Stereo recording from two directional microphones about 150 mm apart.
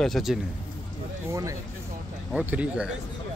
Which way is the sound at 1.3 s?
20° right (ahead or behind).